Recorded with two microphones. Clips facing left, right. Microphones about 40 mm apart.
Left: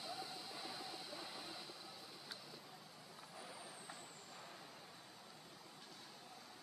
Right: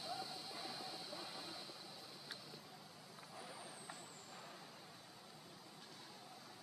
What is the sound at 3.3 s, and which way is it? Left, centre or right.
Vehicle, centre.